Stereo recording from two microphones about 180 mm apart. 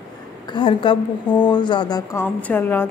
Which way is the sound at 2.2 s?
10° left (ahead or behind).